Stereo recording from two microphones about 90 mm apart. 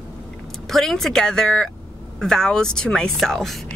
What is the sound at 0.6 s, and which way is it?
Speech, 5° left (ahead or behind).